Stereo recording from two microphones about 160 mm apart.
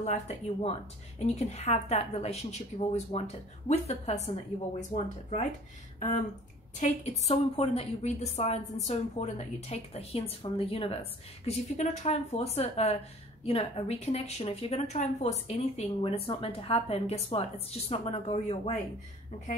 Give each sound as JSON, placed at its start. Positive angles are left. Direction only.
{"t": 0.0, "sound": "speech", "side_deg": 45}
{"t": 6.8, "sound": "a woman's voice", "side_deg": 40}